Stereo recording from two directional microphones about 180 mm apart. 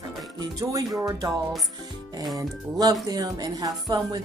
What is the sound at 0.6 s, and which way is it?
Speech, 20° right (ahead or behind).